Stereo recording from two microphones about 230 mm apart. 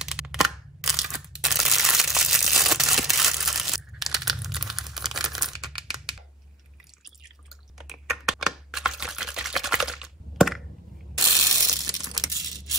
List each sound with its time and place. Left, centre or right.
0.0 s a sound: centre
7.8 s typing: centre
11.2 s ratchet: centre
12.2 s tearing: centre